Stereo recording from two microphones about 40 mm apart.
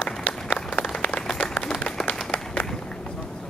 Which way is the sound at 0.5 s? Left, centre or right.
Left.